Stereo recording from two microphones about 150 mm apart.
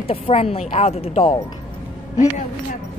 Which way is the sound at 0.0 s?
40° left (ahead or behind).